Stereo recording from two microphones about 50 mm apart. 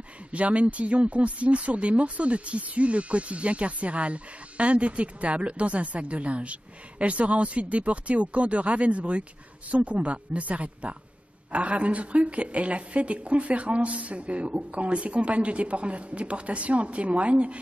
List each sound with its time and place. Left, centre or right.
0.3 s speech: right